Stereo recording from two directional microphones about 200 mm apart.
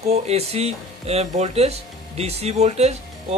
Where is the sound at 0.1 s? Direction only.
30° right (ahead or behind).